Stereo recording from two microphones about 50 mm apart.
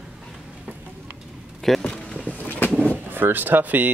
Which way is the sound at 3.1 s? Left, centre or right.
Right.